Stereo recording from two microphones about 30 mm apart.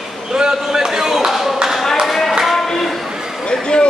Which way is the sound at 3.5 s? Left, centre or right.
Left.